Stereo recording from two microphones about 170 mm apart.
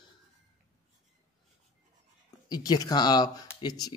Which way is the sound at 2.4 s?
25° left (ahead or behind).